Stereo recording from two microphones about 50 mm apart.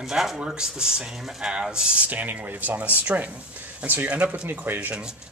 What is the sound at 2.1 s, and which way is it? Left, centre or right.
Speech, right.